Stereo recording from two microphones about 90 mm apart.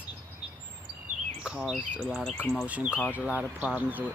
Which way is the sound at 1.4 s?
10° right (ahead or behind).